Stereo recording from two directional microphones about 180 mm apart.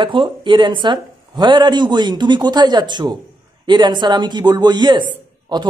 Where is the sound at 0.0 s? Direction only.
25° right (ahead or behind).